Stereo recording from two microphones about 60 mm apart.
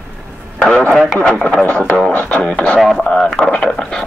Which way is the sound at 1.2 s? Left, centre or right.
Centre.